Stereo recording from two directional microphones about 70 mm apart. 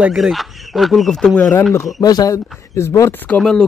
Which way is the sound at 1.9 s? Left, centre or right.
Left.